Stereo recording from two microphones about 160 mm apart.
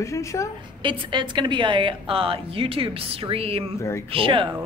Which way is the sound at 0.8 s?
30° right (ahead or behind).